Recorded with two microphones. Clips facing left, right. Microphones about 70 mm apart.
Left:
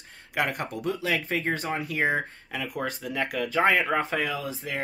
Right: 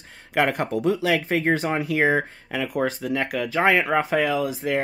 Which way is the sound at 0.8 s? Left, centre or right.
Right.